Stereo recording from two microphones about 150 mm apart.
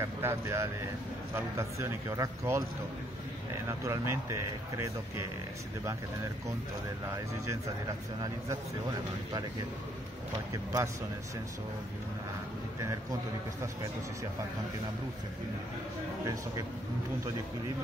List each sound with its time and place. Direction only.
0.0 s speech: 15° right (ahead or behind)
3.6 s speech: 20° right (ahead or behind)
7.1 s speech: 20° right (ahead or behind)
10.5 s speech: 20° right (ahead or behind)